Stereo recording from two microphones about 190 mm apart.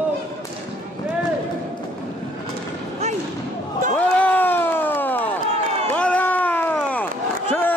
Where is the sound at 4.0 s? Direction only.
5° left (ahead or behind).